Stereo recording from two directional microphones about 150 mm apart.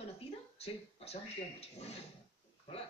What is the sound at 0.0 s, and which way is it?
Speech, 40° left (ahead or behind).